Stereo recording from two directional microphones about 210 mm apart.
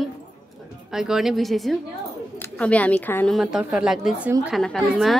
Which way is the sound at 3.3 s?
5° right (ahead or behind).